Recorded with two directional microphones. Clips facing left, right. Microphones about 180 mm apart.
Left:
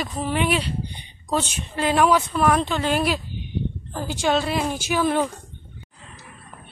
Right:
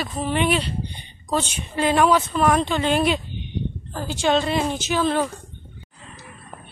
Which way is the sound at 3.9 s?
15° left (ahead or behind).